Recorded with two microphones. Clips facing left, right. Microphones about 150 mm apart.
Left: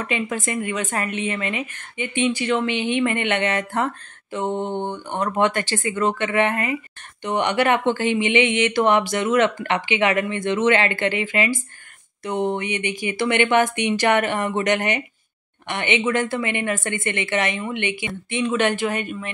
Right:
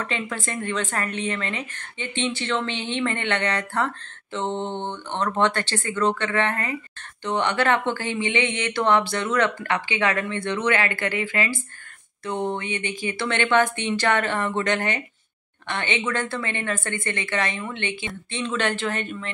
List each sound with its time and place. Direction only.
0.0 s a woman's voice: 20° left (ahead or behind)